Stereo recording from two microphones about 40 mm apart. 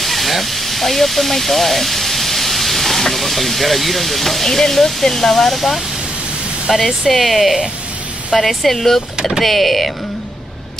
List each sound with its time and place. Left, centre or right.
0.0 s speech: centre